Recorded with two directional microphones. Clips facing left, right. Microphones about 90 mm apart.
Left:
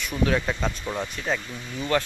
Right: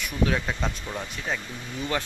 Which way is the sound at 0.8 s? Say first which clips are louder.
Left 4 dB; 20° left (ahead or behind).